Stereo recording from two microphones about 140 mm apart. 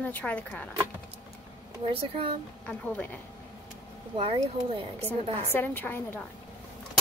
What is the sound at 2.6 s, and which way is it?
Speech, 10° left (ahead or behind).